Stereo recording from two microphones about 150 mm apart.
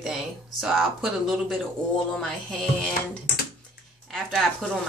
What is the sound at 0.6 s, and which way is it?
Speech, centre (ahead or behind).